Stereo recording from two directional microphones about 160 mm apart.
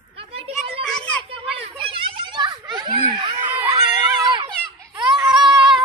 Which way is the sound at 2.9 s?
30° right (ahead or behind).